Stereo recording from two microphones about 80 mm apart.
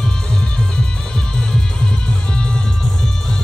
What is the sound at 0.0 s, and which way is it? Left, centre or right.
Music, centre.